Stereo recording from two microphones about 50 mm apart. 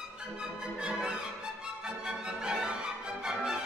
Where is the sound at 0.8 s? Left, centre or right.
Centre.